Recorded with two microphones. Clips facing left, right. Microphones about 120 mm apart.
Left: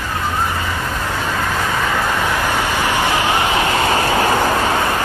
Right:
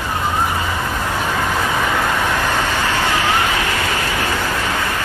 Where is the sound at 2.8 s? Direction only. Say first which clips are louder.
Left 1 dB; 15° left (ahead or behind); by 5.0 s 35° left (ahead or behind).